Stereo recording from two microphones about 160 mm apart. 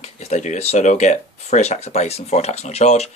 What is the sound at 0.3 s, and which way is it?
Speech, 45° left (ahead or behind).